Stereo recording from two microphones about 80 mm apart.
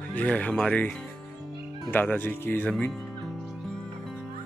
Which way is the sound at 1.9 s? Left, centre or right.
Left.